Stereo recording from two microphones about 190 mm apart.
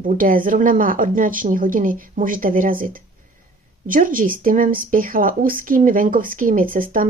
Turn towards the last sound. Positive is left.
turn(degrees=-45)  # may be behind; listen again after turning